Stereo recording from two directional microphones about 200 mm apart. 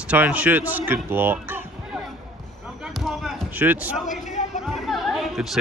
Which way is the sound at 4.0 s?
35° left (ahead or behind).